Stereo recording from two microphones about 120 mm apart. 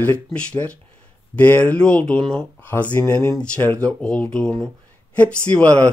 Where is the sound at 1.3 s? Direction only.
15° left (ahead or behind).